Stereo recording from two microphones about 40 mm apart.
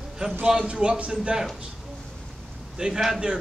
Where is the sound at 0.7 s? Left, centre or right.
Right.